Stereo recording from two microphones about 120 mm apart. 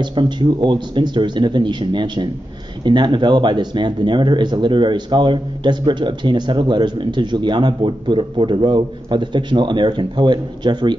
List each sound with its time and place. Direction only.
0.0 s speech: 40° right (ahead or behind)